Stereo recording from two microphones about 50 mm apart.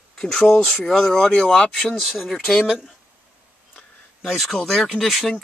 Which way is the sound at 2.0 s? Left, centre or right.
Centre.